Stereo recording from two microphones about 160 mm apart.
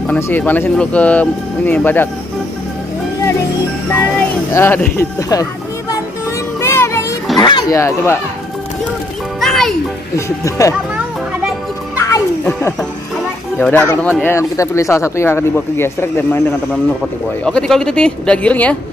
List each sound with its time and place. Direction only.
0.0 s speech: 10° left (ahead or behind)
4.6 s speech: 10° left (ahead or behind)
6.6 s music: 15° left (ahead or behind)
7.3 s speech: 25° left (ahead or behind)
9.4 s music: centre (ahead or behind)
10.1 s speech: 20° left (ahead or behind)
12.0 s music: 15° left (ahead or behind)
13.6 s speech: 10° left (ahead or behind)
17.5 s speech: 5° left (ahead or behind)